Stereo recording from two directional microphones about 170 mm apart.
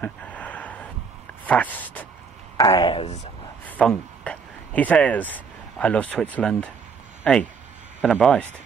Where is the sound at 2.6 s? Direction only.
25° left (ahead or behind); by 3.3 s 40° left (ahead or behind).